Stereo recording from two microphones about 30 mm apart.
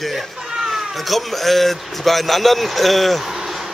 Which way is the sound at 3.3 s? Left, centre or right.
Centre.